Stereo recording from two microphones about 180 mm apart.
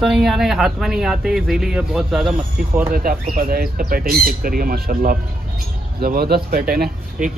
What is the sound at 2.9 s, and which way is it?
Speech, 55° right (ahead or behind).